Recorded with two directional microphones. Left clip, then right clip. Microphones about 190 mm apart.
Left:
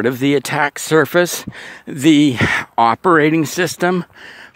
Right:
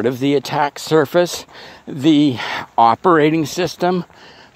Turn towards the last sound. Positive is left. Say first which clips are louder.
# left 1 dB
turn(degrees=45)  # may be behind; listen again after turning